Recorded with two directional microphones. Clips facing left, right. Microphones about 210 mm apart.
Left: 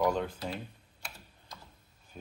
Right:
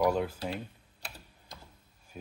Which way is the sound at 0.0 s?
5° right (ahead or behind).